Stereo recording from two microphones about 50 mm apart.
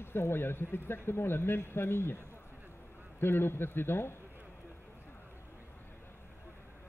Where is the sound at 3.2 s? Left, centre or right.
Left.